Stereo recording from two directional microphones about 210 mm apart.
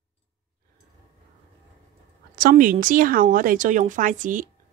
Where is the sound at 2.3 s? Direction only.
40° right (ahead or behind).